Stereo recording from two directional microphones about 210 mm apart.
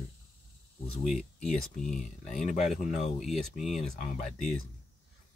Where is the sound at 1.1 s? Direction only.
Centre (ahead or behind).